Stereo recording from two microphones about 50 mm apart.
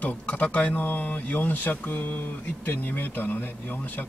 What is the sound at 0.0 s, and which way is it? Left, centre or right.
A man's voice, left.